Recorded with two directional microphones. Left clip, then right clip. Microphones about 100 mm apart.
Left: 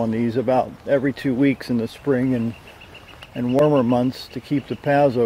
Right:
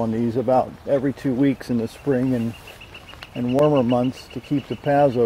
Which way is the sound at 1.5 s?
20° left (ahead or behind).